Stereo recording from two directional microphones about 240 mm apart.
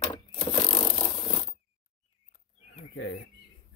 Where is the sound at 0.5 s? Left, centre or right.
Left.